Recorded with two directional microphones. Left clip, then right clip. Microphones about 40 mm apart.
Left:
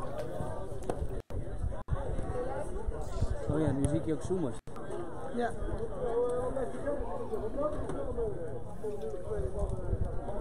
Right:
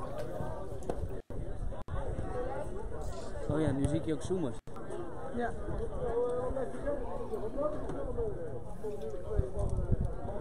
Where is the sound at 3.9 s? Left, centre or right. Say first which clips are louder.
Left 1 dB; right.